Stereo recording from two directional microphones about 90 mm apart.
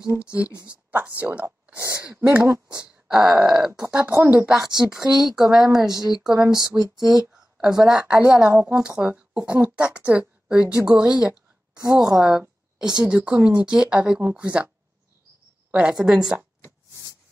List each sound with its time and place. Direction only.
0.0 s speech: 15° right (ahead or behind)
2.0 s speech: 15° right (ahead or behind)
2.4 s speech: 40° right (ahead or behind)
2.8 s groan: 10° right (ahead or behind)
3.9 s speech: 15° right (ahead or behind)
4.7 s a woman's voice: 5° right (ahead or behind)
15.7 s speech: 15° right (ahead or behind)